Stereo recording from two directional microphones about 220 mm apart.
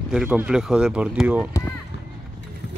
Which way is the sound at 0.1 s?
5° right (ahead or behind).